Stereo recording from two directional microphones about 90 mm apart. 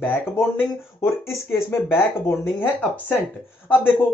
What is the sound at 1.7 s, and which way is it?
Speech, 25° left (ahead or behind).